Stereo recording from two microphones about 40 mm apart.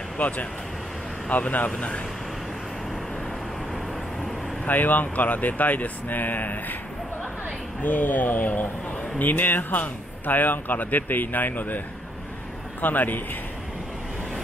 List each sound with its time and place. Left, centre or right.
0.2 s speech: left
4.6 s speech: left
7.8 s speech: left
12.8 s speech: left